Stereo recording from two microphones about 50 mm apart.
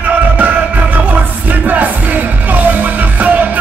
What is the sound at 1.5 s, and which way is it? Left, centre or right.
Music, right.